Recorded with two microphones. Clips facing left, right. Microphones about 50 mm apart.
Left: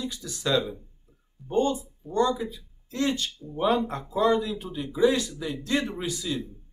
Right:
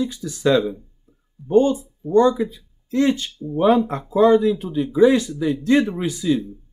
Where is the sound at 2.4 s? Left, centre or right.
Right.